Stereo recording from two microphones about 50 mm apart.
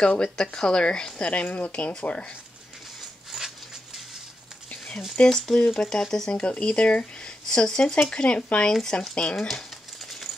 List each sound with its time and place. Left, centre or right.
0.0 s a woman's voice: centre
1.3 s speech: left
3.3 s a sound: centre
5.2 s speech: left
5.8 s a woman's voice: centre
7.9 s speech: left